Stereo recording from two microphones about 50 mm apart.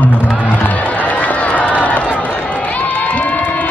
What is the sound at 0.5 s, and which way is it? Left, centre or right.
Crowd, left.